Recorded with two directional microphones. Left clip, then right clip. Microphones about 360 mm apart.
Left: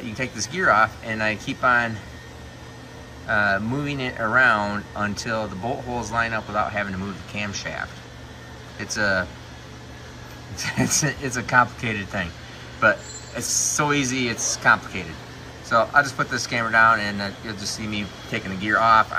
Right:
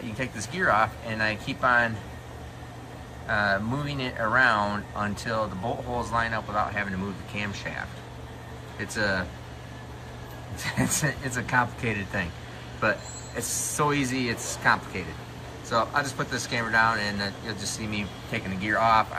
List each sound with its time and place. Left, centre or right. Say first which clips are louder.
0.2 s speech: left 4 dB; centre
3.3 s speech: left 4 dB; centre
10.6 s speech: left 4 dB; centre
13.7 s speech: left 1 dB; centre